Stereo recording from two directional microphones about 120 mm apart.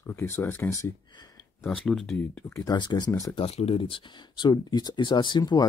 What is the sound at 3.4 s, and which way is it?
Speech, 55° left (ahead or behind).